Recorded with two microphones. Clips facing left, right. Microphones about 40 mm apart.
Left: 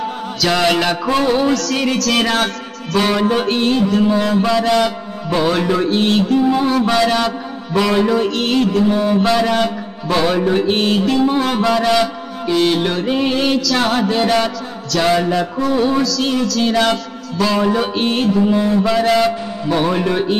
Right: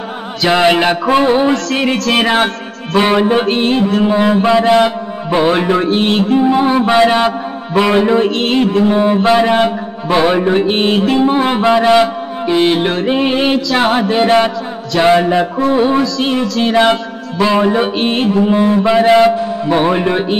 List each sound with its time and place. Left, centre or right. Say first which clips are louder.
0.4 s music: right 5 dB; right